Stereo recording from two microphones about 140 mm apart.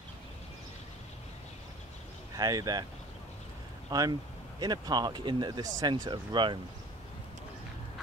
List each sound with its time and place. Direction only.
2.3 s speech: 25° right (ahead or behind)
3.9 s speech: 30° right (ahead or behind)